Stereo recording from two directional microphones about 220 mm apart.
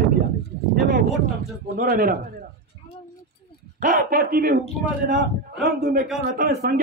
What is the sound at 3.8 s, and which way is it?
Speech, 40° right (ahead or behind).